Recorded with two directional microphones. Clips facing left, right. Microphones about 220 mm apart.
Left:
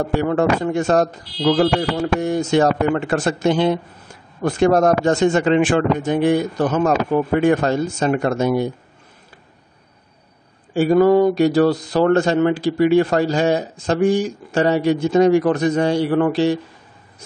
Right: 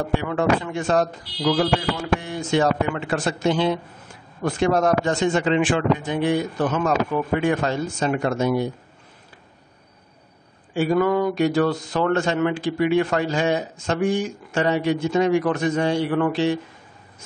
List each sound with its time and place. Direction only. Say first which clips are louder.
0.2 s speech: left 4 dB; 45° left (ahead or behind)
10.7 s speech: left 6 dB; 40° left (ahead or behind)